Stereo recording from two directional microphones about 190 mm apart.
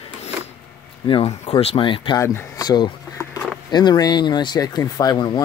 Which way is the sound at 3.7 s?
20° left (ahead or behind).